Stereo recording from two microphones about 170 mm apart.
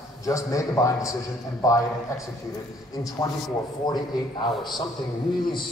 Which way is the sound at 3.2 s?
20° left (ahead or behind).